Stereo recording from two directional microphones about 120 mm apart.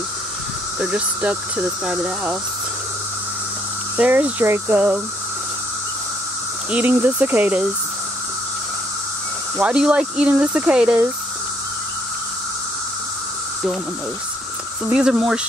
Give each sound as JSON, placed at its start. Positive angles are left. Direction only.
{"t": 0.7, "sound": "speech", "side_deg": -10}
{"t": 3.9, "sound": "speech", "side_deg": -15}
{"t": 6.7, "sound": "speech", "side_deg": -15}
{"t": 9.6, "sound": "speech", "side_deg": -10}
{"t": 14.9, "sound": "speech", "side_deg": -10}